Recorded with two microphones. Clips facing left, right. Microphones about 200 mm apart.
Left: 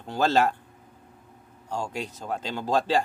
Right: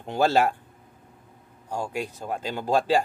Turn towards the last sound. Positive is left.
turn(degrees=-10)  # may be behind; listen again after turning